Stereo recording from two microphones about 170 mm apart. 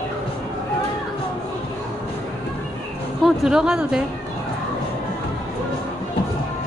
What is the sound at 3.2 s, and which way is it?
Speech, 5° right (ahead or behind).